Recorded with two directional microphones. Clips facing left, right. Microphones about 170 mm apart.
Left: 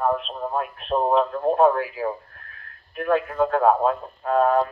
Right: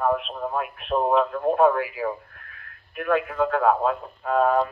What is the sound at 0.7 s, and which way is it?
Speech, 30° left (ahead or behind).